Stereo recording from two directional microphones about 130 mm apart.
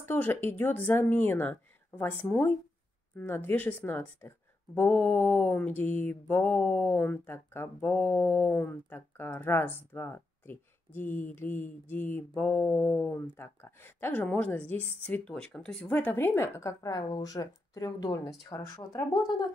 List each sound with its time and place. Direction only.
0.0 s mantra: 15° left (ahead or behind)
15.0 s a woman's voice: 10° left (ahead or behind); by 19.2 s 30° left (ahead or behind)